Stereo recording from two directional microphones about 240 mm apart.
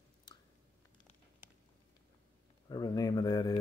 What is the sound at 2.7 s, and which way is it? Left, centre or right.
Speech, centre.